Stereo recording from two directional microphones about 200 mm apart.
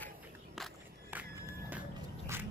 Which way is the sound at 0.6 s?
5° right (ahead or behind).